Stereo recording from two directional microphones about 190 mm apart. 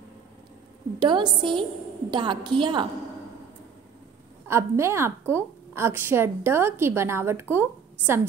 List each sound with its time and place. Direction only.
0.9 s a woman's voice: 25° right (ahead or behind)
4.5 s a woman's voice: 15° right (ahead or behind)